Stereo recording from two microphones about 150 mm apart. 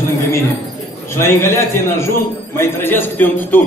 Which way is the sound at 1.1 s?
15° left (ahead or behind).